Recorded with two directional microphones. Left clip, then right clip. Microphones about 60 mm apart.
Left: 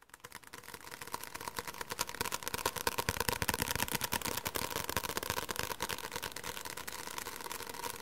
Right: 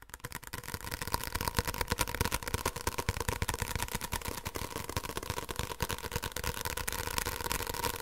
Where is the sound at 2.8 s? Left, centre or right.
Left.